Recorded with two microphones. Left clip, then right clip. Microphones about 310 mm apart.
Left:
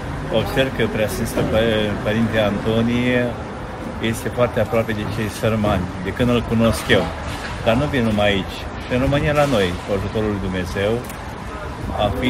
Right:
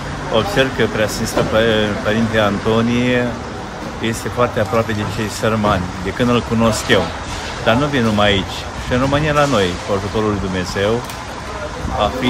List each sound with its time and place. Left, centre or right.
0.3 s speech: centre